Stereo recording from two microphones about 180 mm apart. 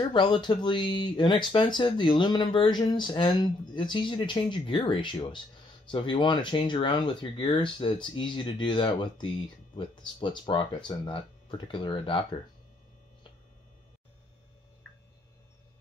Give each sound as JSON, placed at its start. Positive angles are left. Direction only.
{"t": 0.1, "sound": "speech", "side_deg": 25}